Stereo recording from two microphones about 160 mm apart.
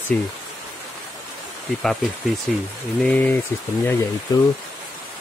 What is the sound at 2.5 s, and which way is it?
Speech, centre (ahead or behind).